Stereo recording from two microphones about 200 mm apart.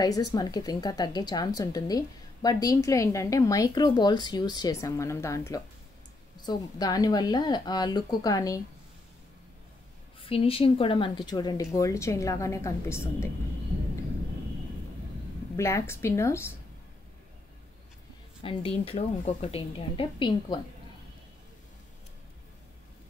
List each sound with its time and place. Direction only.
0.0 s speech: 20° left (ahead or behind)
10.2 s speech: 30° left (ahead or behind)
15.5 s speech: 15° left (ahead or behind)
18.4 s speech: 25° left (ahead or behind)